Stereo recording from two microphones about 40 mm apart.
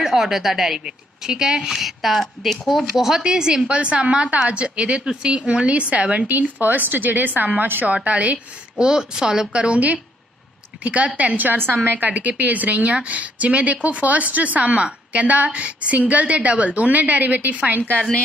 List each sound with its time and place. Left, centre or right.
0.0 s a woman's voice: centre
3.3 s a woman's voice: centre
6.6 s a woman's voice: right
8.7 s a woman's voice: centre
10.8 s a woman's voice: right
11.5 s a woman's voice: right
12.1 s speech: right